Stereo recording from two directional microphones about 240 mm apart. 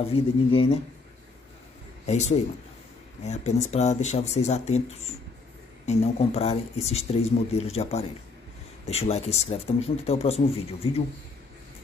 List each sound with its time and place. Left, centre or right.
0.1 s speech: left
2.0 s speech: left